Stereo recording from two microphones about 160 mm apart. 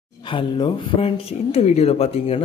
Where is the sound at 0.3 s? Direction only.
30° left (ahead or behind).